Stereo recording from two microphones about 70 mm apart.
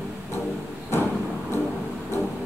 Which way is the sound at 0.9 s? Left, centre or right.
Left.